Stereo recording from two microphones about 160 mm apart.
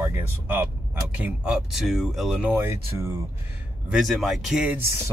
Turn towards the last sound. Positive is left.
turn(degrees=-5)  # may be behind; listen again after turning